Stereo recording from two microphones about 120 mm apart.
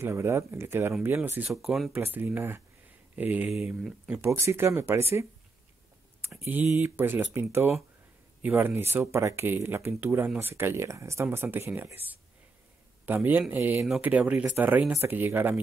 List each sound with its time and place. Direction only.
0.0 s speech: 20° right (ahead or behind)
1.5 s speech: centre (ahead or behind)
1.9 s speech: 15° right (ahead or behind)
3.5 s speech: 5° right (ahead or behind)
4.2 s speech: 25° right (ahead or behind)
6.2 s speech: 15° right (ahead or behind)
13.0 s speech: 15° right (ahead or behind)